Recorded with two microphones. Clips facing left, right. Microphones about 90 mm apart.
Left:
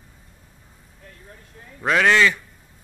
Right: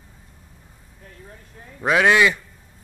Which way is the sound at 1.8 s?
15° right (ahead or behind).